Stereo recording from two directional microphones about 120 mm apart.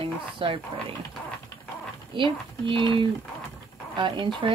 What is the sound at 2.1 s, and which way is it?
Speech, 45° right (ahead or behind).